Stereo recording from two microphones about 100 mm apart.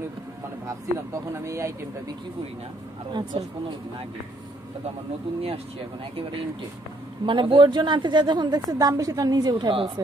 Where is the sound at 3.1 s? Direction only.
50° right (ahead or behind).